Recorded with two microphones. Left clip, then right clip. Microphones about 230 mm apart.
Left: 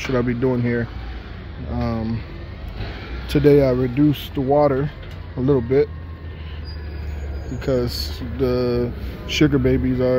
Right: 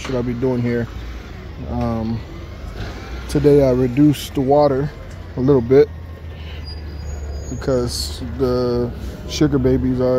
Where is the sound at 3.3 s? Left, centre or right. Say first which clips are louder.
Right 1 dB; centre.